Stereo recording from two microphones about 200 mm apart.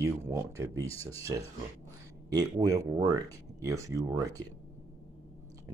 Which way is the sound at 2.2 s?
20° right (ahead or behind).